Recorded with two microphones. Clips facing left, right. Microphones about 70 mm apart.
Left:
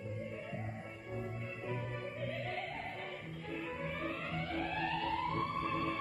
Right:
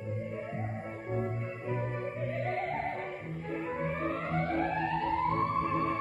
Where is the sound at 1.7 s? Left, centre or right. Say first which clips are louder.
Right 8 dB; right.